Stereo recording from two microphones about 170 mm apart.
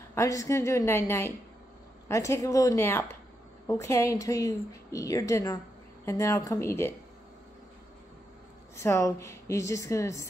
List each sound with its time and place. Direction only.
0.1 s a woman's voice: 20° left (ahead or behind)
8.7 s a woman's voice: 15° left (ahead or behind)